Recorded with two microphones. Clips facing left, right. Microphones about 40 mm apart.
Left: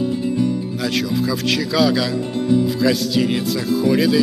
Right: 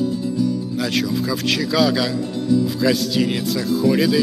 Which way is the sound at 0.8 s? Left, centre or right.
Centre.